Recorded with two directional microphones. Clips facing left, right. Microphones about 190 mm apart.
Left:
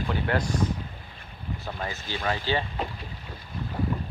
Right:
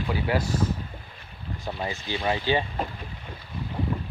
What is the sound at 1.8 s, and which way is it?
Speech, 15° right (ahead or behind).